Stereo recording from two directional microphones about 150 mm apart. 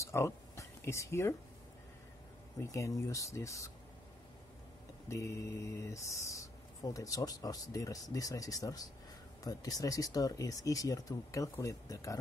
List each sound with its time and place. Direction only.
0.0 s a sound: 20° left (ahead or behind)
2.6 s speech: 20° left (ahead or behind)
5.0 s speech: 20° left (ahead or behind)